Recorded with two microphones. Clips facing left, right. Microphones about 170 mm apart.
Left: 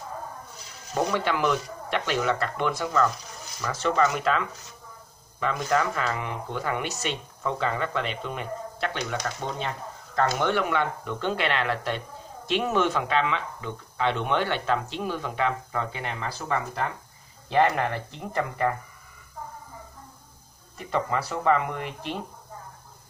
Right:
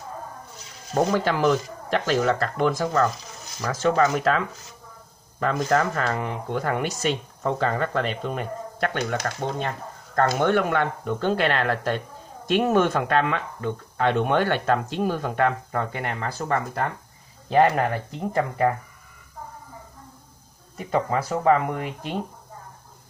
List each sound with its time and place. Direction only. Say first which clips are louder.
0.9 s speech: right 4 dB; 35° right (ahead or behind)
20.9 s speech: right 4 dB; 45° right (ahead or behind)